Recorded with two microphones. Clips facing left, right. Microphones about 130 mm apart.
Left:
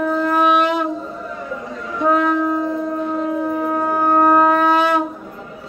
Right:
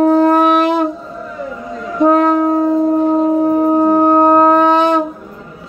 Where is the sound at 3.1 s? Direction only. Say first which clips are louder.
Right 8 dB; 40° right (ahead or behind).